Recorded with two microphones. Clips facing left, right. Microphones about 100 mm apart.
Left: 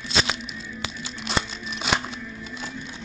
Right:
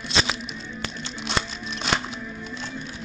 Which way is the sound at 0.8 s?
5° left (ahead or behind).